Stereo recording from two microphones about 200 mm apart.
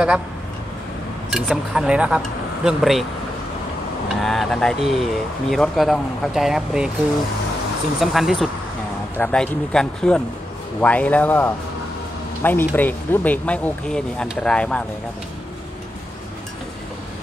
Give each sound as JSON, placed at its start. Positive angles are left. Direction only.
{"t": 1.3, "sound": "speech", "side_deg": -5}
{"t": 4.1, "sound": "speech", "side_deg": 0}
{"t": 8.0, "sound": "speech", "side_deg": 0}